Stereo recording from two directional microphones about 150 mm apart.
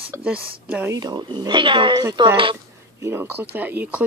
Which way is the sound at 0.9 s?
30° right (ahead or behind).